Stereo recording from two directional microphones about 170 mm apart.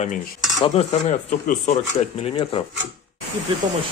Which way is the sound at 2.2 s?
35° left (ahead or behind).